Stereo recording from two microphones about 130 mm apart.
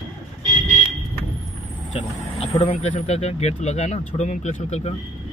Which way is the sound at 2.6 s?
60° left (ahead or behind).